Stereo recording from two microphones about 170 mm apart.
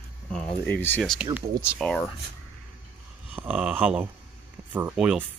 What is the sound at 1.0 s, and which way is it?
Speech, centre (ahead or behind).